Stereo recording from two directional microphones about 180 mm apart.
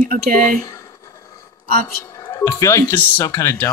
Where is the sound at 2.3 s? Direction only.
20° left (ahead or behind).